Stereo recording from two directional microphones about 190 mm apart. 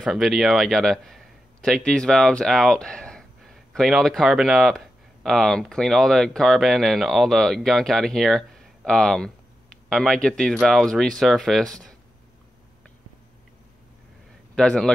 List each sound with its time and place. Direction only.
0.0 s speech: centre (ahead or behind)
14.5 s a man's voice: 5° left (ahead or behind)